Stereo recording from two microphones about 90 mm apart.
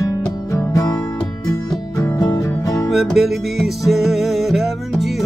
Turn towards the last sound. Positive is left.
turn(degrees=0)  # may be behind; listen again after turning